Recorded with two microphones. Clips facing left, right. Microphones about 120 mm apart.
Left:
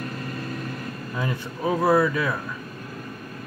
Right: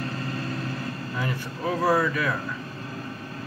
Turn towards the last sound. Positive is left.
turn(degrees=25)  # may be behind; listen again after turning